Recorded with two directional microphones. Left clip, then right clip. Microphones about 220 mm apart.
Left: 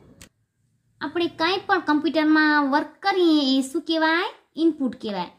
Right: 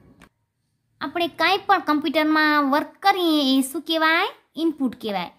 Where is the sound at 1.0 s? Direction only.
25° right (ahead or behind).